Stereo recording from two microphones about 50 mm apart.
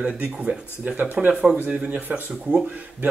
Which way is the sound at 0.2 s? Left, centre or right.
Right.